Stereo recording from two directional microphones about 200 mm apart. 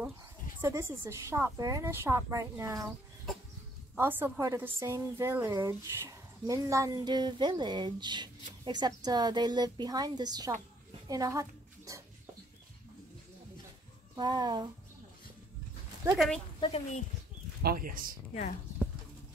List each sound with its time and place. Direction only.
0.6 s a woman's voice: 15° right (ahead or behind)
3.9 s a woman's voice: 10° right (ahead or behind)
11.1 s a sound: 15° right (ahead or behind)
14.1 s a woman's voice: 20° right (ahead or behind)
16.5 s speech: 25° left (ahead or behind)
17.6 s speech: 50° right (ahead or behind)
18.3 s speech: 40° left (ahead or behind)